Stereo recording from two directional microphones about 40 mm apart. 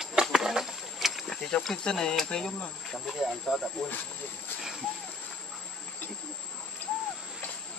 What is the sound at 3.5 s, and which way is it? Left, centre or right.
Speech, centre.